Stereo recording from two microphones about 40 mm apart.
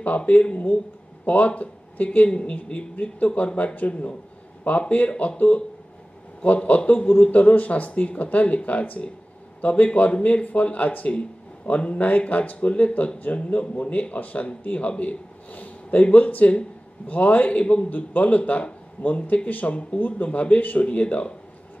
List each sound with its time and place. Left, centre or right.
0.2 s speech: left
2.2 s speech: left
6.4 s speech: left
6.8 s a man's voice: left
7.2 s speech: left
17.8 s speech: left
20.0 s speech: left